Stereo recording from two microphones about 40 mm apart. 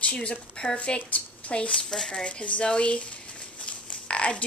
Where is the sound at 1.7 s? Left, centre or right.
Centre.